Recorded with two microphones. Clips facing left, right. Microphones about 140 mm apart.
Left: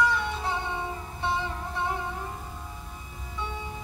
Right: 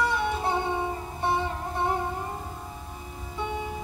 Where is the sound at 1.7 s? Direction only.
50° right (ahead or behind).